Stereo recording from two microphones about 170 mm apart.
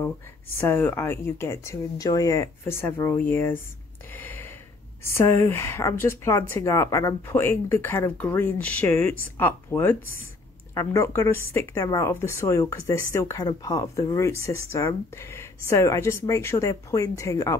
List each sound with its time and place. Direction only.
0.6 s speech: 15° left (ahead or behind)
4.1 s a sound: 10° left (ahead or behind)
5.0 s speech: 15° left (ahead or behind)